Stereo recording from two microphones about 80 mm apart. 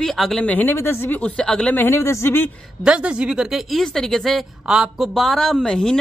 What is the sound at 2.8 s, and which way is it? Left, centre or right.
Speech, centre.